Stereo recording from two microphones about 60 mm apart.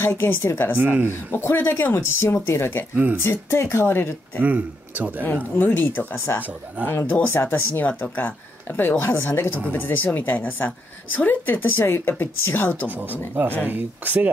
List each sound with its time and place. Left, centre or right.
0.0 s speech: left
0.7 s speech: right
1.3 s speech: left
4.4 s speech: right
5.2 s speech: left
13.4 s speech: right